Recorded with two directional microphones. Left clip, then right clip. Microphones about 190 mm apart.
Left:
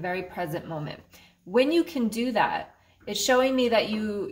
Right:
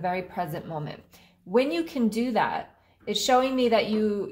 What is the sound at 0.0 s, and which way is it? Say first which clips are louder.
A woman's voice: right 2 dB; 25° right (ahead or behind).